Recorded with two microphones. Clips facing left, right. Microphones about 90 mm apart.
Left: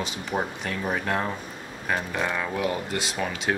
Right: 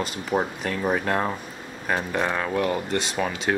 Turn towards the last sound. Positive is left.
turn(degrees=0)  # may be behind; listen again after turning